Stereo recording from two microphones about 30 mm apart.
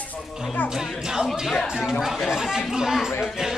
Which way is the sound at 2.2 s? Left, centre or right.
Centre.